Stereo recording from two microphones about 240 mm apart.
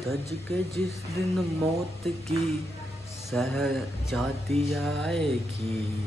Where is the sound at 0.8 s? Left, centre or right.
Centre.